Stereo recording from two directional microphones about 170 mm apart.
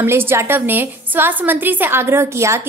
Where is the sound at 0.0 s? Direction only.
15° right (ahead or behind).